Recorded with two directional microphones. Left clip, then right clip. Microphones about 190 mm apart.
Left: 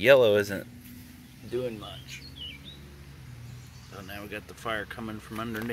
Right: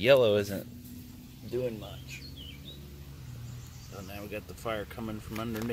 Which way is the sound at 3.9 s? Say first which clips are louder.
Left 2 dB; 5° left (ahead or behind).